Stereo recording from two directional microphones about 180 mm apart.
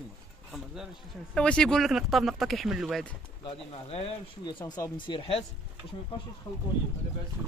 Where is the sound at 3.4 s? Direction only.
35° left (ahead or behind).